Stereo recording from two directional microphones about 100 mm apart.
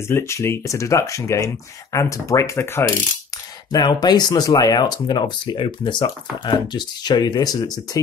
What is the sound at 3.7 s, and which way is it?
Speech, 45° left (ahead or behind).